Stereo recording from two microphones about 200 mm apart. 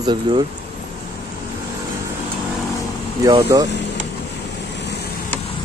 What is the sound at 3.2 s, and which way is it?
Speech, 20° right (ahead or behind).